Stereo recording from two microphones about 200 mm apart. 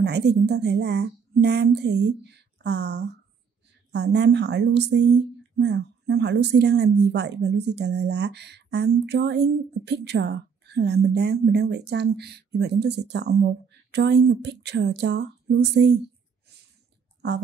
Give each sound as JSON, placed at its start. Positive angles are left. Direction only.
{"t": 0.0, "sound": "speech", "side_deg": -55}